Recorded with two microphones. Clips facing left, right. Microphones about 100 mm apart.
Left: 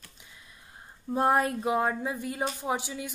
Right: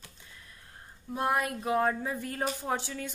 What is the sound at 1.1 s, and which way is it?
A woman's voice, 30° left (ahead or behind).